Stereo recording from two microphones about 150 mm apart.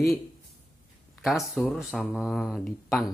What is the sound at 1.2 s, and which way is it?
Speech, centre (ahead or behind).